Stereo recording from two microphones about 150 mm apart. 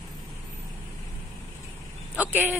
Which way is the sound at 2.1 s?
10° right (ahead or behind).